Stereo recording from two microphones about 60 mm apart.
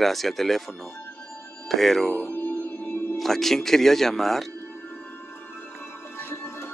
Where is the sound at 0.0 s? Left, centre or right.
Centre.